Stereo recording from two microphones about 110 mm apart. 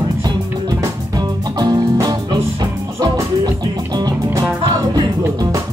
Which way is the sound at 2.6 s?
40° right (ahead or behind).